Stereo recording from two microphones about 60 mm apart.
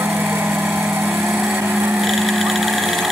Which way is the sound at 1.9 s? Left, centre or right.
Centre.